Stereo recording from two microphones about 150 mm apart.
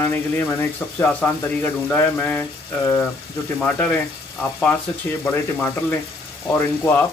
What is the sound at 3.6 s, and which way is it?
Speech, 10° left (ahead or behind).